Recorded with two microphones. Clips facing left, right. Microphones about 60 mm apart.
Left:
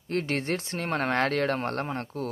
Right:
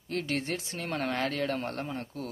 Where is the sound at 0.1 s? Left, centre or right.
Left.